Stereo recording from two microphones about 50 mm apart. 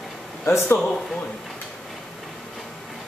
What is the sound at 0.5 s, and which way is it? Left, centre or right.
Speech, left.